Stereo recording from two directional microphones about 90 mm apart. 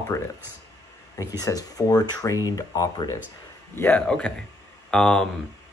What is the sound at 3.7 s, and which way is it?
A man's voice, 20° left (ahead or behind).